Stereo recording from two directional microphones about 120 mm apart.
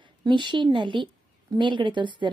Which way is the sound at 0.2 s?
40° right (ahead or behind).